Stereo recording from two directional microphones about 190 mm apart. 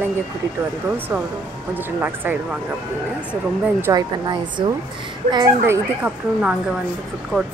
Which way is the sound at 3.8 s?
20° right (ahead or behind).